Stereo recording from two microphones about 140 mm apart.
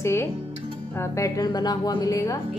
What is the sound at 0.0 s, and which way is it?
A woman's voice, 20° left (ahead or behind).